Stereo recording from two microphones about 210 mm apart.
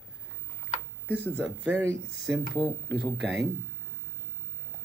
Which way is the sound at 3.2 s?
55° right (ahead or behind).